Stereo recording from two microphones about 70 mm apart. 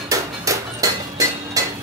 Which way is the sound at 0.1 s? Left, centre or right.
Right.